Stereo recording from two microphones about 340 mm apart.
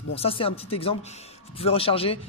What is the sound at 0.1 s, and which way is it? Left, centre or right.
A man's voice, centre.